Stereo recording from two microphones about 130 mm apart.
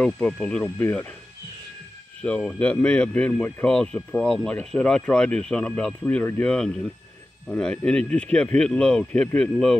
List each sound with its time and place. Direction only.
0.0 s speech: 5° left (ahead or behind)
2.2 s speech: 10° left (ahead or behind)